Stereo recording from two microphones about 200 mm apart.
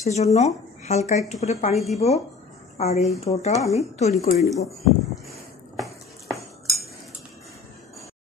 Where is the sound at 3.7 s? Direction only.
35° left (ahead or behind).